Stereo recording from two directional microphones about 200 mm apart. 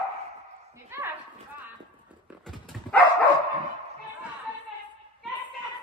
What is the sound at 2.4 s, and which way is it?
Dog, centre (ahead or behind).